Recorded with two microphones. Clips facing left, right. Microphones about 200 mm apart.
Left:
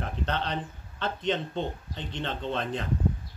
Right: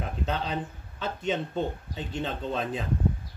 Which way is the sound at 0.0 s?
5° right (ahead or behind).